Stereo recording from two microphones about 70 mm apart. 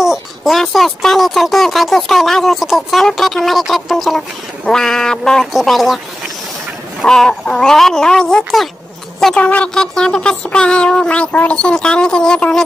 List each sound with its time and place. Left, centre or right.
0.0 s speech: centre
5.5 s speech: centre
7.1 s speech: centre